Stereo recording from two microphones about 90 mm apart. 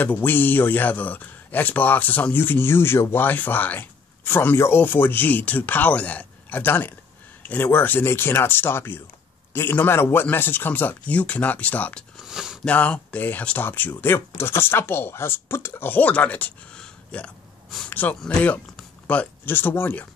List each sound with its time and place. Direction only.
0.0 s a man's voice: 20° left (ahead or behind)
12.2 s speech: 5° right (ahead or behind)
12.6 s a man's voice: 15° left (ahead or behind)